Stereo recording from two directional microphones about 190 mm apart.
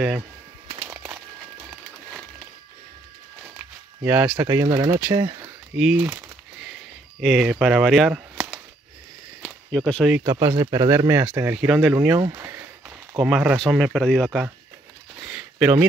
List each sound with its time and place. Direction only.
0.8 s a sound: 5° right (ahead or behind)
3.5 s walk: 10° right (ahead or behind)
4.4 s speech: 15° right (ahead or behind)
5.8 s speech: centre (ahead or behind)
7.2 s speech: 5° right (ahead or behind)
9.7 s speech: 5° left (ahead or behind)
10.2 s speech: 20° right (ahead or behind)
13.2 s speech: 5° right (ahead or behind)
15.2 s a sound: 5° right (ahead or behind)